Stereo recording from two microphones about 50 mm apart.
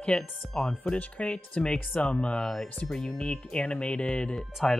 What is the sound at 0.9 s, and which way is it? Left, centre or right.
Speech, left.